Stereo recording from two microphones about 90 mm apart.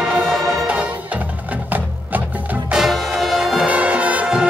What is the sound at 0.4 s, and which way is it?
Music, 35° right (ahead or behind).